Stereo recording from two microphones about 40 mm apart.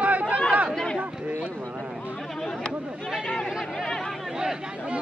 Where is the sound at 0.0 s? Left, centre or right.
Right.